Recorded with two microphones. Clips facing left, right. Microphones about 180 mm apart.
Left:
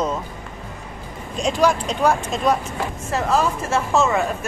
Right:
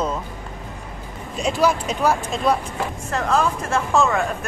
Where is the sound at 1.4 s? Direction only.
5° right (ahead or behind).